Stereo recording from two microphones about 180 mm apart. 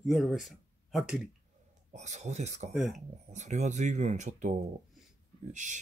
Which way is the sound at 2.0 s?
40° right (ahead or behind).